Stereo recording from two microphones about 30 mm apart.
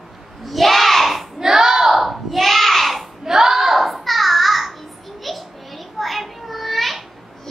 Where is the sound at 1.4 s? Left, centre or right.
Centre.